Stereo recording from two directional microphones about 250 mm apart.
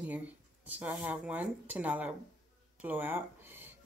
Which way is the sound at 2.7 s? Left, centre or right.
Centre.